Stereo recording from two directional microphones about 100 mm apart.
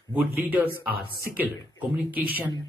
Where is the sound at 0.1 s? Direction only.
15° right (ahead or behind).